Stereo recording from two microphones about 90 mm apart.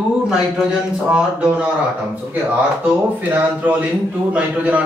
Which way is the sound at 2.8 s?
15° right (ahead or behind).